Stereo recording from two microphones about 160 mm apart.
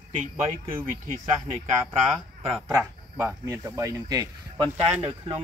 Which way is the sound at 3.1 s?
15° right (ahead or behind).